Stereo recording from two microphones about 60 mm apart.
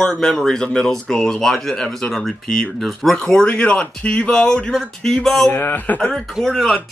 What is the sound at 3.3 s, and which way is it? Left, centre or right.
Speech, centre.